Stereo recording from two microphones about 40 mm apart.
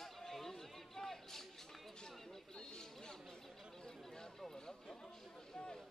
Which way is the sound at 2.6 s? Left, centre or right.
Centre.